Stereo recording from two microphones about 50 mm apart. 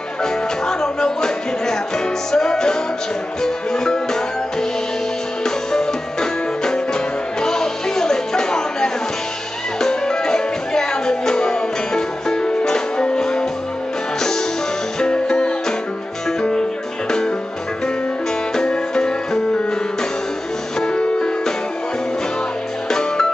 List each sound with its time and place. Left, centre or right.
0.2 s music: centre
15.0 s music: centre
18.5 s music: centre
20.8 s music: centre
22.8 s music: centre